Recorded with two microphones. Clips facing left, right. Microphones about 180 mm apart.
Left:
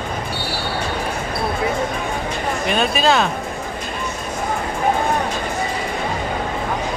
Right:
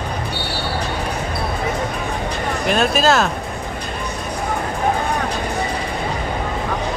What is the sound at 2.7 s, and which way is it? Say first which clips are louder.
Speech: right 2 dB; centre (ahead or behind).